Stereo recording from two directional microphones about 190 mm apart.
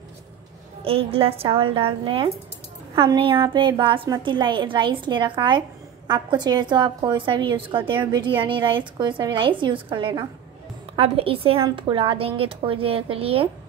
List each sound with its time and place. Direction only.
0.8 s a woman's voice: 30° right (ahead or behind)